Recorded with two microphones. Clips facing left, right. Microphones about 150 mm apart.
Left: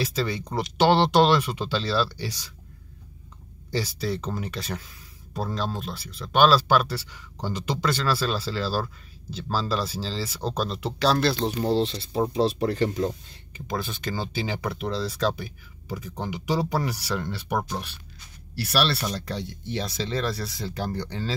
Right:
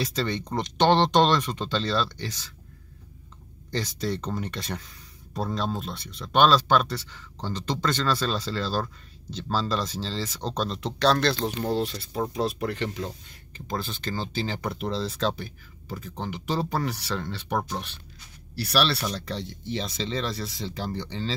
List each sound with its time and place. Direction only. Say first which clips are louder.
0.0 s speech: left 1 dB; 5° left (ahead or behind)
3.7 s speech: left 1 dB; 5° left (ahead or behind)
11.4 s speech: left 3 dB; 25° left (ahead or behind)
13.7 s speech: left 1 dB; 10° left (ahead or behind)